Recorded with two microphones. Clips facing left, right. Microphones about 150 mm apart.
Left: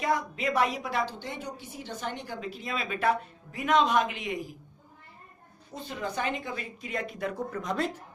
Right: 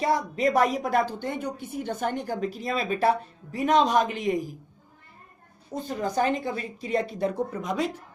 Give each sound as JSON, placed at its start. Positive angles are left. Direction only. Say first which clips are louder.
{"t": 0.0, "sound": "a woman's voice", "louder": "right 5 dB", "side_deg": -40}
{"t": 5.9, "sound": "speech", "louder": "right 7 dB", "side_deg": -40}
{"t": 7.5, "sound": "speech", "louder": "right 2 dB", "side_deg": -15}